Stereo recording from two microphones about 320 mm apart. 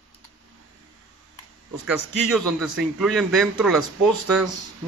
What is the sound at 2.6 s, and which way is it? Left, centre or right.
A man's voice, centre.